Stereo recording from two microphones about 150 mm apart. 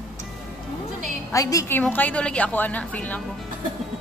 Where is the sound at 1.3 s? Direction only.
20° left (ahead or behind).